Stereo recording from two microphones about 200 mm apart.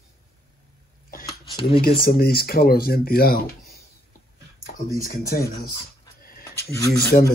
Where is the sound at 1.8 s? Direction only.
50° left (ahead or behind).